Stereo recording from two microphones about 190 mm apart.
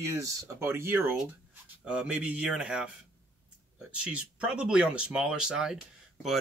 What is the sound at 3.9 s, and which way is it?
Speech, 5° right (ahead or behind).